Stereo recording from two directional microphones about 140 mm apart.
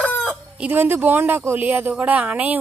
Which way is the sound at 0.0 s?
5° left (ahead or behind).